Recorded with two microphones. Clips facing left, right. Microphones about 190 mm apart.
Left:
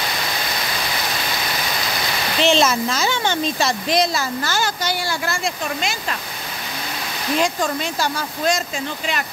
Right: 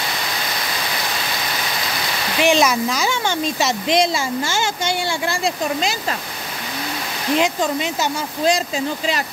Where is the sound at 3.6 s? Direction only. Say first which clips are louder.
Right 3 dB; 25° right (ahead or behind).